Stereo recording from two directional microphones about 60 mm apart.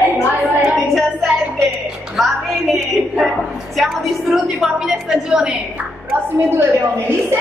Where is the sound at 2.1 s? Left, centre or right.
Centre.